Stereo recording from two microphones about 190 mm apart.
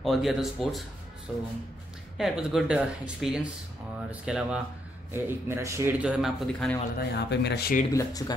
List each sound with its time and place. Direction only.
0.0 s speech: centre (ahead or behind)
2.1 s speech: centre (ahead or behind)
6.0 s speech: 5° right (ahead or behind)
7.1 s speech: 65° left (ahead or behind)
7.9 s speech: 20° left (ahead or behind)